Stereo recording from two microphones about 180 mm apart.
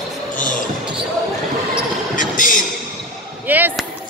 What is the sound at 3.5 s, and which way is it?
Basketball bounce, 10° right (ahead or behind).